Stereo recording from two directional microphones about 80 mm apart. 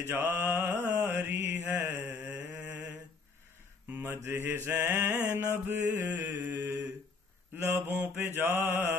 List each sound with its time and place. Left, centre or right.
0.0 s mantra: right
3.9 s mantra: right
6.6 s mantra: right